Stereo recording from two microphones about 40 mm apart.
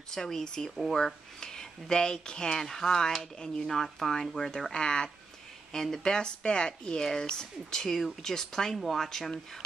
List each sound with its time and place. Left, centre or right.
0.1 s speech: centre
2.7 s speech: centre